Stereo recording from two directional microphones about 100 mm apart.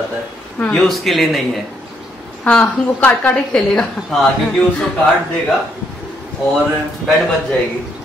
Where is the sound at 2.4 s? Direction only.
15° left (ahead or behind).